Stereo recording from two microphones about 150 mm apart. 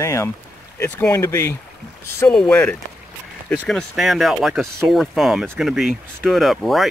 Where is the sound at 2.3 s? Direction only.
10° left (ahead or behind).